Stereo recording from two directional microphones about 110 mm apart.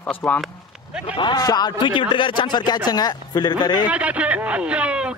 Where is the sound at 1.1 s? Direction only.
45° left (ahead or behind).